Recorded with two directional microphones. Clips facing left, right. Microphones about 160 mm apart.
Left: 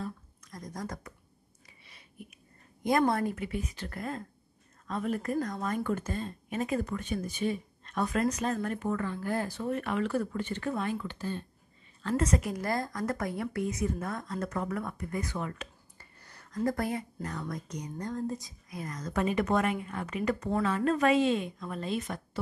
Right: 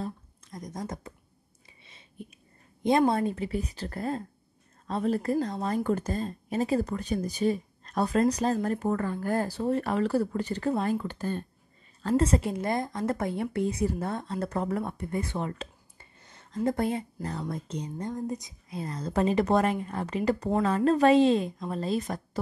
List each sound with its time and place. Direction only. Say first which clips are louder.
0.5 s speech: right 3 dB; 20° right (ahead or behind)
1.9 s a sound: right 4 dB; 25° right (ahead or behind)
3.1 s a woman's voice: right 3 dB; 25° right (ahead or behind); by 11.4 s 50° right (ahead or behind)
12.0 s a woman's voice: right 4 dB; 30° right (ahead or behind)